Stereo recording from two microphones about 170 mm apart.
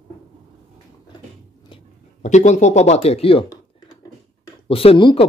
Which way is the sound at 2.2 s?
45° left (ahead or behind).